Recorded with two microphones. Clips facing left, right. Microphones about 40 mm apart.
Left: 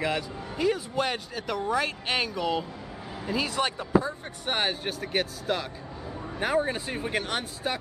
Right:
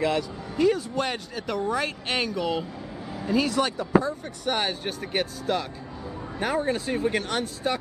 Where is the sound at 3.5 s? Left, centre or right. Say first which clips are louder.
Right 3 dB; left.